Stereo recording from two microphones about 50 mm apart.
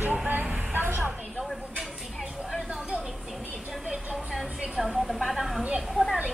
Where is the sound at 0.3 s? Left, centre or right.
Right.